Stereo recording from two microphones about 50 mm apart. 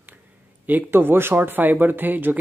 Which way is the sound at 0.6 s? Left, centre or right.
Right.